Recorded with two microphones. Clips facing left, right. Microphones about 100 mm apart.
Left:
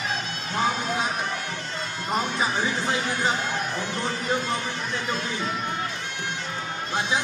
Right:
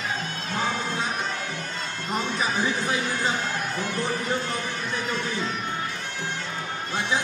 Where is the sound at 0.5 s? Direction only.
20° left (ahead or behind).